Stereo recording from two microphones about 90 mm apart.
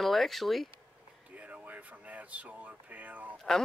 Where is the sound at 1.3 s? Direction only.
15° right (ahead or behind).